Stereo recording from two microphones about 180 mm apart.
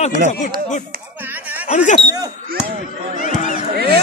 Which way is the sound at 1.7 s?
45° left (ahead or behind).